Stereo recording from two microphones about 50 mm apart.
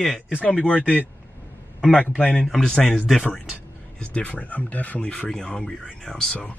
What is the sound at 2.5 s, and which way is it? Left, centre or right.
Speech, centre.